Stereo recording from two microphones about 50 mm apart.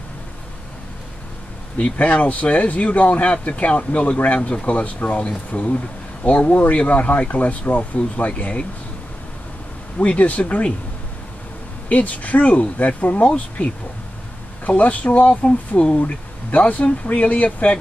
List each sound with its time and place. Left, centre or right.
1.8 s speech: left
9.9 s speech: left
11.9 s speech: left
14.7 s speech: left